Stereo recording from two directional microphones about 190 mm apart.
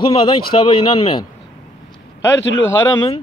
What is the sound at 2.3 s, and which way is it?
Speech, 75° left (ahead or behind).